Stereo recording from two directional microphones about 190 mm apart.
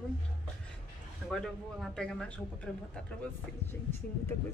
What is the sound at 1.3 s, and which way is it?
Speech, 5° left (ahead or behind).